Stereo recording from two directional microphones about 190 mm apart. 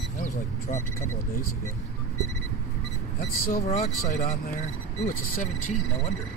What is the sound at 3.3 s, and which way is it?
Speech, 45° left (ahead or behind).